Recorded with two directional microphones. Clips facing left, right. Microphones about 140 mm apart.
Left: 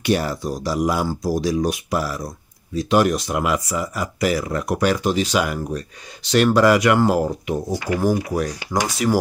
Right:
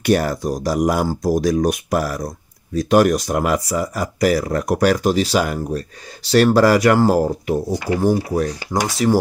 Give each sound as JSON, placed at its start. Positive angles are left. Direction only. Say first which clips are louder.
{"t": 0.0, "sound": "speech", "louder": "right 3 dB", "side_deg": -45}